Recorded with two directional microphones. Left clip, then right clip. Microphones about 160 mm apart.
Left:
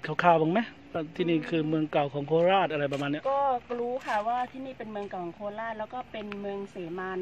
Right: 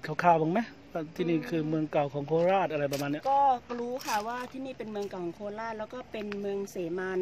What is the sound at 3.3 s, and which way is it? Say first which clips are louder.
Speech: right 3 dB; 25° right (ahead or behind).